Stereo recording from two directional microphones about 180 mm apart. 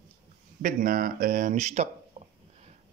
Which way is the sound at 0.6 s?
50° right (ahead or behind).